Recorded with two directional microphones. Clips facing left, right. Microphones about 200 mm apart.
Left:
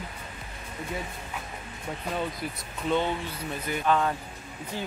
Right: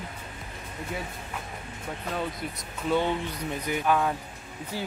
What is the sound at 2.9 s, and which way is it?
Speech, 15° right (ahead or behind).